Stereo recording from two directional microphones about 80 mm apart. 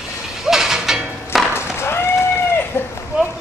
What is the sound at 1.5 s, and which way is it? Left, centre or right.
Cat, left.